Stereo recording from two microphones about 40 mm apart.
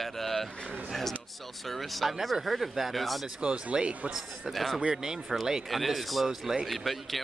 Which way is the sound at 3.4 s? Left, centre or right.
Right.